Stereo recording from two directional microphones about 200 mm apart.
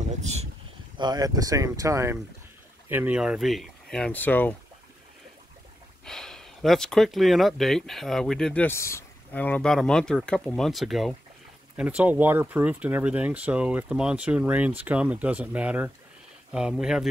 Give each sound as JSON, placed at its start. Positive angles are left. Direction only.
{"t": 0.1, "sound": "speech", "side_deg": -35}
{"t": 0.9, "sound": "speech", "side_deg": -20}
{"t": 6.0, "sound": "speech", "side_deg": 0}